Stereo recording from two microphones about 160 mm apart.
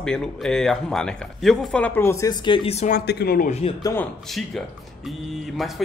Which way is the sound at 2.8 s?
80° left.